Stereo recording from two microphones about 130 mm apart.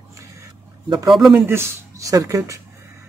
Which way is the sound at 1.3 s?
20° right (ahead or behind).